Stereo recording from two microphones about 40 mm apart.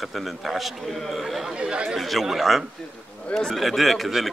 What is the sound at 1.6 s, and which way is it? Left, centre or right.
Speech, right.